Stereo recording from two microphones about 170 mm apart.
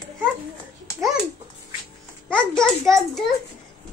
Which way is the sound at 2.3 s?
5° left (ahead or behind).